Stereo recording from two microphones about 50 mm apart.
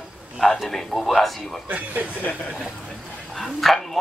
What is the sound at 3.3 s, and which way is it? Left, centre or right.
Dog, centre.